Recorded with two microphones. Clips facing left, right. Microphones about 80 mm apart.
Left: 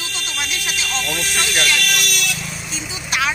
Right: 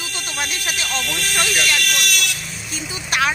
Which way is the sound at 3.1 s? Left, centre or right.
Right.